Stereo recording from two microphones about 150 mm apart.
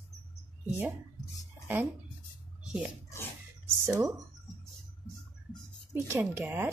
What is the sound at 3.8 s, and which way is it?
Speech, 20° right (ahead or behind).